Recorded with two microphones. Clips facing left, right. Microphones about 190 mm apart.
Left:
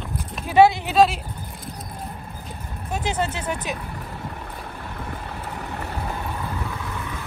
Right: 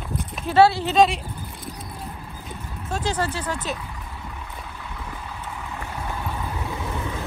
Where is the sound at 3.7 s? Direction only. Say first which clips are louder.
Left 3 dB; 55° left (ahead or behind).